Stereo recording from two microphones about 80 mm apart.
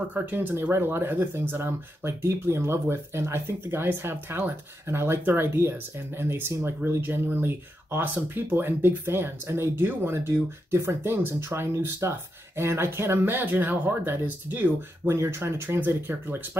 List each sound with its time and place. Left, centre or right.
0.1 s speech: right